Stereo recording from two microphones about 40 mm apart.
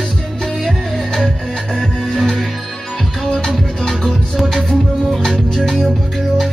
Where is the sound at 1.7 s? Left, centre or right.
Centre.